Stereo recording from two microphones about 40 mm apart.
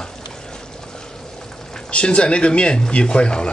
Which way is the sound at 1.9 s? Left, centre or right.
Left.